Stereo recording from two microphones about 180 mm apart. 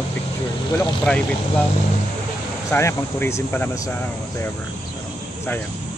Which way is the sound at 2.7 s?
15° left (ahead or behind).